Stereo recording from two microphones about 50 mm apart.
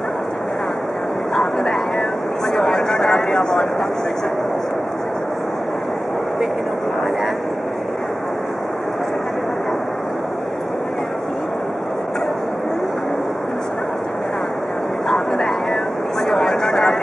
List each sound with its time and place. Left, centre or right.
1.3 s vehicle: centre
15.0 s vehicle: centre